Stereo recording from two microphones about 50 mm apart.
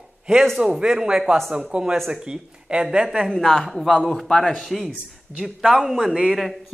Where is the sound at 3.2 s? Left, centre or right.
Centre.